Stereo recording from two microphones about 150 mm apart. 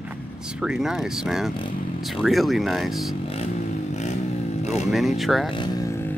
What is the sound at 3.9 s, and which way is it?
Vehicle, 50° left (ahead or behind).